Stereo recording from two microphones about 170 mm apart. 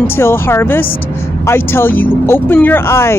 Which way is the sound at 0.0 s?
15° left (ahead or behind).